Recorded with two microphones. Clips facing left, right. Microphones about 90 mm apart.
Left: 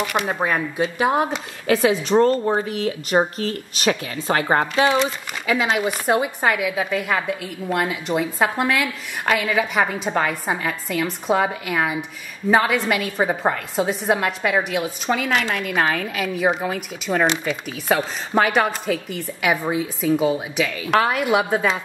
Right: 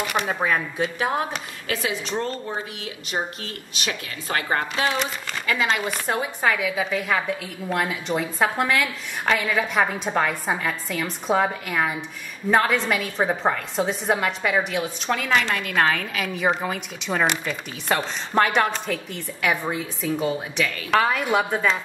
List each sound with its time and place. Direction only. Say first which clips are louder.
0.0 s a woman's voice: left 2 dB; 5° left (ahead or behind)
1.7 s a woman's voice: left 10 dB; 35° left (ahead or behind)
4.3 s a woman's voice: left 5 dB; 30° left (ahead or behind)
5.5 s a woman's voice: left 3 dB; 10° left (ahead or behind)